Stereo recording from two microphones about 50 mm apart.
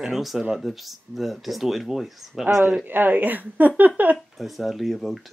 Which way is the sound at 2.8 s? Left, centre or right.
Right.